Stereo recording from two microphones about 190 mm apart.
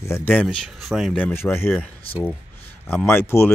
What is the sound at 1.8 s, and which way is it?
Speech, 30° left (ahead or behind).